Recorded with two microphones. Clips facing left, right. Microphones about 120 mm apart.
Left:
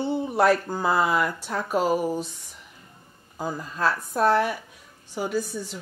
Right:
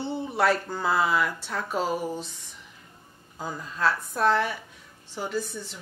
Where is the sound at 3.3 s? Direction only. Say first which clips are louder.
Left 4 dB; 10° left (ahead or behind).